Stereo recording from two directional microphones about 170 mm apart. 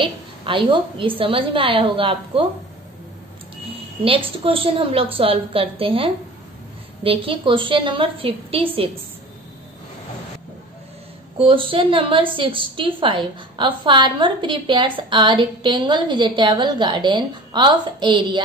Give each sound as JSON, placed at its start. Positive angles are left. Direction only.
{"t": 0.0, "sound": "a woman's voice", "side_deg": -30}
{"t": 4.0, "sound": "a woman's voice", "side_deg": -30}
{"t": 11.3, "sound": "a woman's voice", "side_deg": -30}